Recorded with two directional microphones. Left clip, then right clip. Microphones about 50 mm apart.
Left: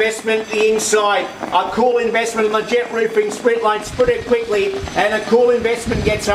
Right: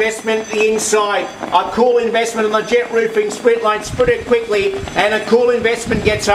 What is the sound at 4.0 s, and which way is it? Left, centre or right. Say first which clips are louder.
Speech: right 1 dB; centre.